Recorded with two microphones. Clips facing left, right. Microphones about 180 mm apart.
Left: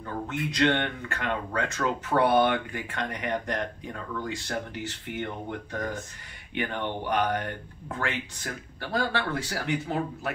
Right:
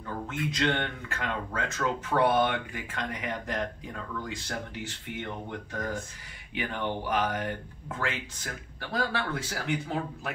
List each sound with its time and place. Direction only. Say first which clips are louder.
0.3 s speech: left 4 dB; centre (ahead or behind)